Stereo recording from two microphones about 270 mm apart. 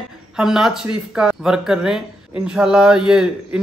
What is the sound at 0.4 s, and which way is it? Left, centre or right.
Speech, centre.